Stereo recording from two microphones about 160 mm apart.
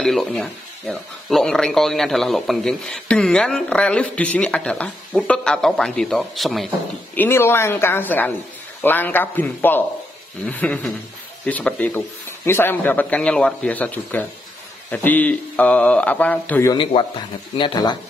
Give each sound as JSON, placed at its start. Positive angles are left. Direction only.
{"t": 0.0, "sound": "speech", "side_deg": 5}
{"t": 7.2, "sound": "speech", "side_deg": 15}
{"t": 16.7, "sound": "speech", "side_deg": 35}